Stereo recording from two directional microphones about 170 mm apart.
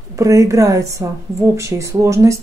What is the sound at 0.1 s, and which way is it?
A woman's voice, 20° right (ahead or behind).